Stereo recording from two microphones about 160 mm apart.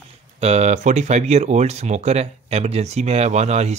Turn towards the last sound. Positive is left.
turn(degrees=-45)  # may be behind; listen again after turning